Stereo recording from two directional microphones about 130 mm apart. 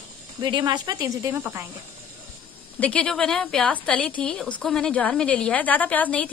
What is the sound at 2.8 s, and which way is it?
A woman's voice, 10° left (ahead or behind).